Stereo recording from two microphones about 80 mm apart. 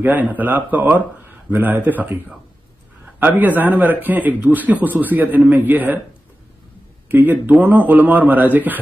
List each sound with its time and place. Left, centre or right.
0.0 s a man's voice: right
7.1 s a man's voice: right